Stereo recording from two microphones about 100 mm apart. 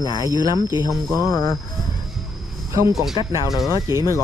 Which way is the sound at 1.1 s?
35° left (ahead or behind).